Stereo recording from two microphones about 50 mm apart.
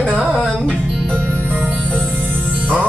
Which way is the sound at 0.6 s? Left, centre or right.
Centre.